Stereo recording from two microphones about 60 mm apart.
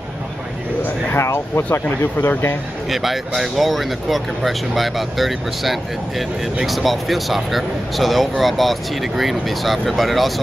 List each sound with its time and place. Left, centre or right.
0.8 s a sound: left
1.6 s speech: left
2.9 s speech: centre